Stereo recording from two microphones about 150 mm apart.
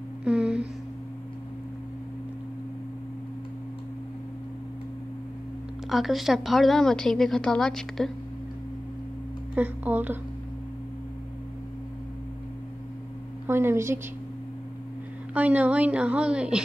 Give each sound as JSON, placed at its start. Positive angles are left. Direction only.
{"t": 0.2, "sound": "a sound", "side_deg": -5}
{"t": 5.9, "sound": "a woman's voice", "side_deg": 0}
{"t": 9.6, "sound": "a woman's voice", "side_deg": -10}
{"t": 13.5, "sound": "a woman's voice", "side_deg": -15}
{"t": 15.3, "sound": "a woman's voice", "side_deg": -10}